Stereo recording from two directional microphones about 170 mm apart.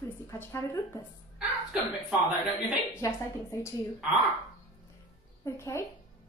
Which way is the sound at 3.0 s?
15° left (ahead or behind).